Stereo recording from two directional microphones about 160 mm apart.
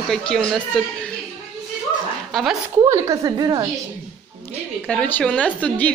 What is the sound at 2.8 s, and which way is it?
Speech, 20° right (ahead or behind).